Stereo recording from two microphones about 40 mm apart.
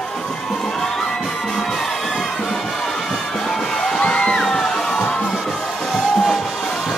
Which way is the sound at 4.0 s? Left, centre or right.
Left.